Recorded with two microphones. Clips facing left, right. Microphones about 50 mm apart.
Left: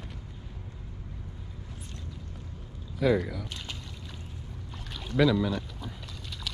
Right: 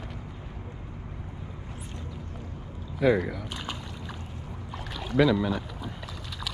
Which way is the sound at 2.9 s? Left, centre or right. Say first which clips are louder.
Right 2 dB; centre.